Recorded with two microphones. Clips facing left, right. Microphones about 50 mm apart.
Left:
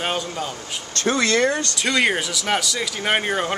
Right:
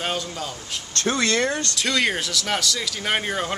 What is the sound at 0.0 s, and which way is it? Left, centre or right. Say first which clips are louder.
Speech: left 3 dB; centre.